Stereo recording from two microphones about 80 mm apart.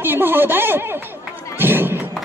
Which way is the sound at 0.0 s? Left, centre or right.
Right.